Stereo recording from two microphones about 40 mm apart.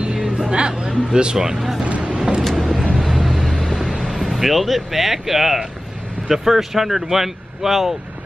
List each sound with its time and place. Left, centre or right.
0.0 s speech: centre
1.8 s vehicle: right
2.5 s vehicle: centre
4.2 s speech: centre